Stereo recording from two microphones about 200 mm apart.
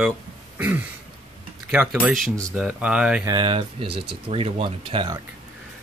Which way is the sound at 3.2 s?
20° right (ahead or behind).